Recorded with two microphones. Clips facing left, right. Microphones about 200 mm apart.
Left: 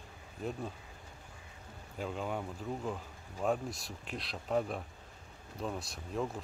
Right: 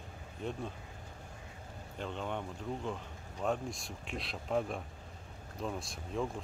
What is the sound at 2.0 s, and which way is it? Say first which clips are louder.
Speech: left 1 dB; 5° left (ahead or behind).